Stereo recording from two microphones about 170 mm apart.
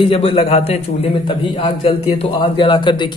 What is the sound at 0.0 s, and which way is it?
A man's voice, 30° left (ahead or behind).